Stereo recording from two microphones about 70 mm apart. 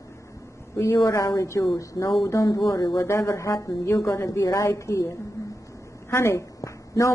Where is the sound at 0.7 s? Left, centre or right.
Left.